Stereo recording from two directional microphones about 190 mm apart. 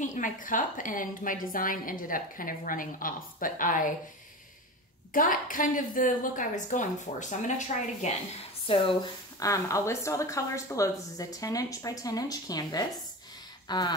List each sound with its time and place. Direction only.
0.0 s a woman's voice: 45° left (ahead or behind)
5.1 s a woman's voice: 45° left (ahead or behind)
8.6 s a woman's voice: 25° left (ahead or behind)